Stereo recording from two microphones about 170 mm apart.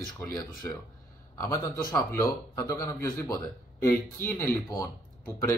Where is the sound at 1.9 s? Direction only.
20° left (ahead or behind).